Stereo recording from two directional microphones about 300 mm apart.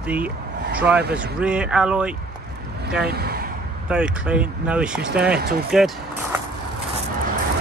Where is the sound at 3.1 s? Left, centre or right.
Right.